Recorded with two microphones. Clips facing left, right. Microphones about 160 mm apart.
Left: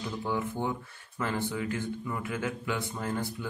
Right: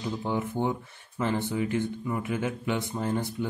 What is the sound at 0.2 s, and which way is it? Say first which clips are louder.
Speech: right 2 dB; 20° right (ahead or behind).